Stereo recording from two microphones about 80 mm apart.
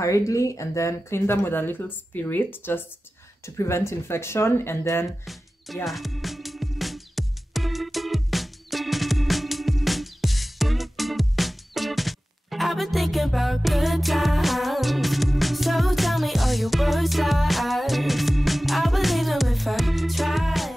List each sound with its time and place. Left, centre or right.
0.0 s speech: left
5.2 s music: centre